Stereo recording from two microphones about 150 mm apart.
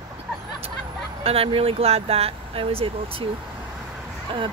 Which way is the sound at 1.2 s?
40° right (ahead or behind).